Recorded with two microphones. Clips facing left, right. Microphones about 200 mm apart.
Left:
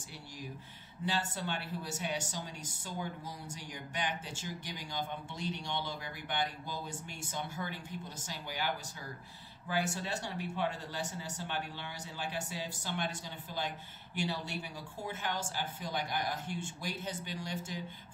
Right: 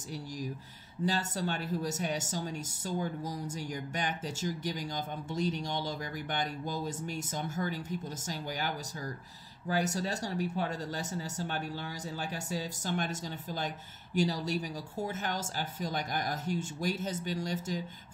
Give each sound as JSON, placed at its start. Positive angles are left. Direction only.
{"t": 1.0, "sound": "speech", "side_deg": -40}